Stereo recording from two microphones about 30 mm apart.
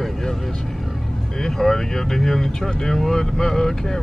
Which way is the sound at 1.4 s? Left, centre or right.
Centre.